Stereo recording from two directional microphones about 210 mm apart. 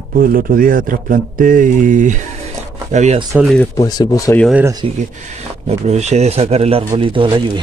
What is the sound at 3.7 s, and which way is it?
Speech, 20° left (ahead or behind).